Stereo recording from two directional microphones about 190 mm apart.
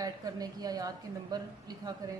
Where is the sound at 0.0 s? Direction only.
20° right (ahead or behind).